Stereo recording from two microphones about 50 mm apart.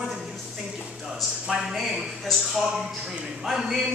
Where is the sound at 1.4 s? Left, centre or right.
Centre.